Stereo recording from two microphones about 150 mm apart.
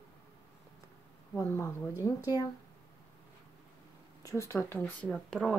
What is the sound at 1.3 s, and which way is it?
Speech, 20° left (ahead or behind).